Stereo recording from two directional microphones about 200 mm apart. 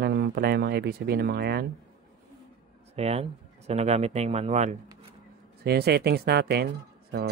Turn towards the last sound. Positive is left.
turn(degrees=-50)  # may be behind; listen again after turning